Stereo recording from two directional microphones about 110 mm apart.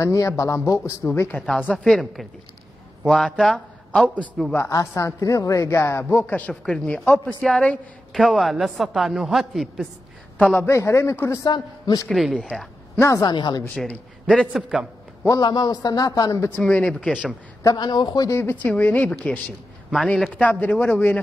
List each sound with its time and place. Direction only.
0.0 s a man's voice: 30° left (ahead or behind)
1.6 s a man's voice: 10° left (ahead or behind)
4.6 s a woman's voice: 30° left (ahead or behind); by 9.8 s centre (ahead or behind)
10.5 s a woman's voice: 20° left (ahead or behind)
11.4 s a man's voice: 40° left (ahead or behind)
12.1 s a woman's voice: centre (ahead or behind)
12.4 s a sound: 10° left (ahead or behind)
13.0 s a woman's voice: 30° left (ahead or behind)
13.3 s a man's voice: 40° left (ahead or behind)
13.7 s a man's voice: 10° left (ahead or behind)
14.5 s a man's voice: 10° right (ahead or behind)
15.2 s a man's voice: 35° left (ahead or behind); by 17.2 s 10° left (ahead or behind)
17.6 s a man's voice: 35° left (ahead or behind)
18.3 s speech: 20° left (ahead or behind)